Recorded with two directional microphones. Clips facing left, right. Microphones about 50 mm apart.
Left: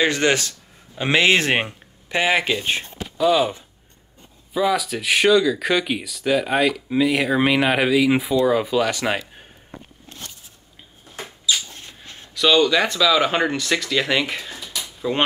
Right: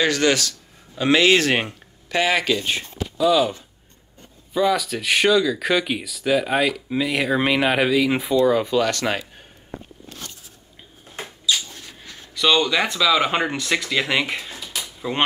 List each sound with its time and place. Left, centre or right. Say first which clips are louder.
0.0 s speech: even; left
4.6 s speech: even; centre
11.2 s rodents: even; centre
12.4 s speech: left 2 dB; centre
14.8 s a sound: left 2 dB; centre